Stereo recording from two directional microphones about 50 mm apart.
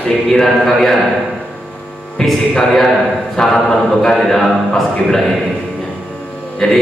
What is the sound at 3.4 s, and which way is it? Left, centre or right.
A man's voice, centre.